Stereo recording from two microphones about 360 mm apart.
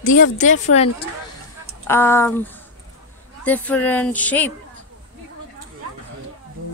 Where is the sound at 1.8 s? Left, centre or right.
Centre.